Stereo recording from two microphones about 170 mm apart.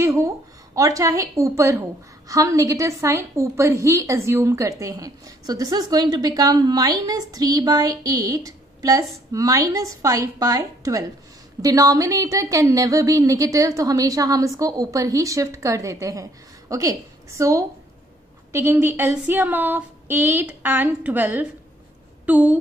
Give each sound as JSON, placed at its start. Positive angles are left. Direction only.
{"t": 0.0, "sound": "a woman's voice", "side_deg": -15}
{"t": 18.5, "sound": "female singing", "side_deg": -15}
{"t": 22.2, "sound": "speech", "side_deg": -10}